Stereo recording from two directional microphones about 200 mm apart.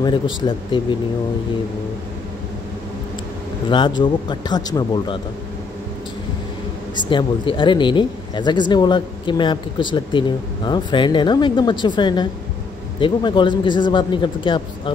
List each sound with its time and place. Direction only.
0.0 s speech: 25° left (ahead or behind)
3.6 s speech: 25° left (ahead or behind)
7.1 s speech: 25° left (ahead or behind)